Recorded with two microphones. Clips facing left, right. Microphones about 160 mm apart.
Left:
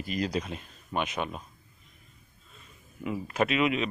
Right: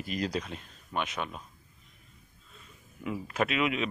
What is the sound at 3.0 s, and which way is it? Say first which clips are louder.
Speech: left 2 dB; 5° left (ahead or behind).